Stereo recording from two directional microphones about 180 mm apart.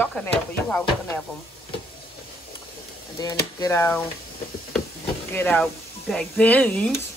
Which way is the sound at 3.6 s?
15° left (ahead or behind).